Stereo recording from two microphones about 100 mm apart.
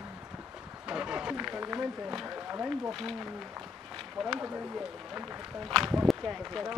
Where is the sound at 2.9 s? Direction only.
Centre (ahead or behind).